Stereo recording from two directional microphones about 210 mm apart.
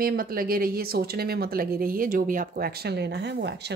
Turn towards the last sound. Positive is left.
turn(degrees=-50)  # may be behind; listen again after turning